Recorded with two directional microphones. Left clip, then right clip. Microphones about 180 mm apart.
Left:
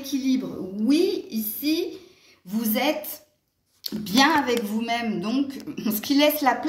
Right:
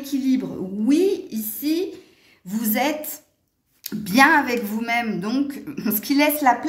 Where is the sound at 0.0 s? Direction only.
60° right (ahead or behind).